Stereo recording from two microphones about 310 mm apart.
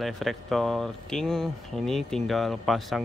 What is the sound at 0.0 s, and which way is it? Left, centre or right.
Speech, centre.